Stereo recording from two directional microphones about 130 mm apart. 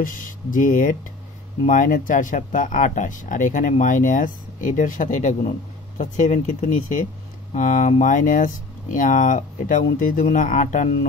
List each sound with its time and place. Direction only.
0.0 s speech: 90° left
9.9 s speech: 90° left